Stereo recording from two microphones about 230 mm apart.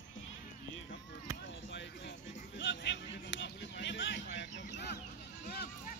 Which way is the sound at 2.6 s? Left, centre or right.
Left.